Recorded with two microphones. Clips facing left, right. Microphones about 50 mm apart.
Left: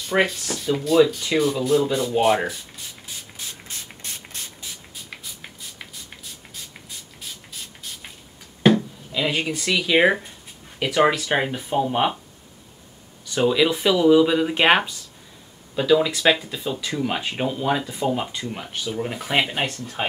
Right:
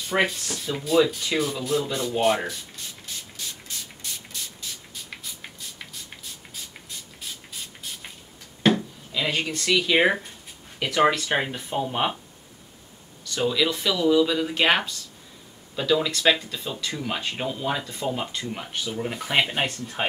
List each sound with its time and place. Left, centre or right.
0.1 s speech: centre
3.3 s spray: left
6.5 s spray: centre
8.6 s speech: centre
13.2 s speech: centre
15.7 s speech: centre